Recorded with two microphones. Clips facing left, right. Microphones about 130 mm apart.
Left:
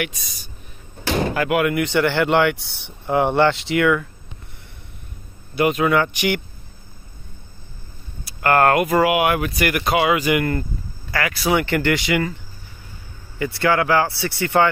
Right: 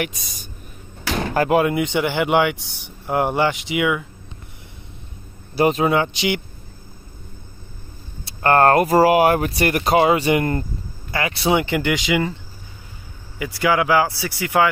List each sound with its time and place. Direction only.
0.0 s speech: 45° right (ahead or behind)
1.3 s speech: 35° right (ahead or behind)
1.7 s speech: 20° right (ahead or behind)
5.5 s speech: 35° right (ahead or behind)
5.9 s speech: 20° right (ahead or behind)
8.3 s speech: 30° right (ahead or behind)
13.4 s speech: 15° right (ahead or behind)